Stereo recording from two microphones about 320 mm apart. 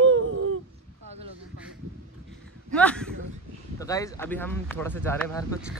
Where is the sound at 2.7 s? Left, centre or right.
Centre.